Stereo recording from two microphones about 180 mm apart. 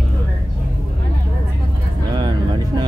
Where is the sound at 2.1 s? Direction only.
25° right (ahead or behind).